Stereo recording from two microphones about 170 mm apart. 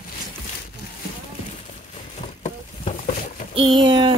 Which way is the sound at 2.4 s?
40° left (ahead or behind).